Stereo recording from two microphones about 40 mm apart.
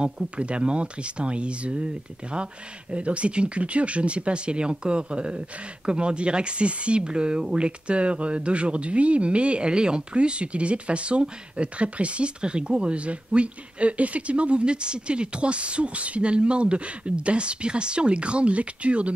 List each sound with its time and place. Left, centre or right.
0.0 s speech: right
2.9 s speech: right